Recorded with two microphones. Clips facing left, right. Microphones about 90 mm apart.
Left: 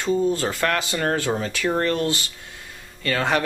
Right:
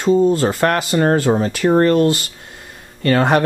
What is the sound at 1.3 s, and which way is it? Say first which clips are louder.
Speech: right 8 dB; 25° right (ahead or behind).